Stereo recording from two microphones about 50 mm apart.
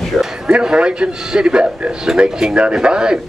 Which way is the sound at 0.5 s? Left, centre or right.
Centre.